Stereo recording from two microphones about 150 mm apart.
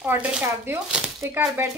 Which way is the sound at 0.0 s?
10° right (ahead or behind).